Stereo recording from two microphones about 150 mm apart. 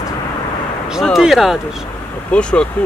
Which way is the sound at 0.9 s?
Centre (ahead or behind).